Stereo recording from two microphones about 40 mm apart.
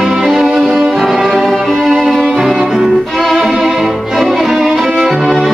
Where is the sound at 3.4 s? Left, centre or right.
Centre.